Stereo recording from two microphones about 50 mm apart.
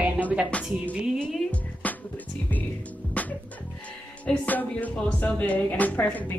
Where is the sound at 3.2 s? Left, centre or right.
Left.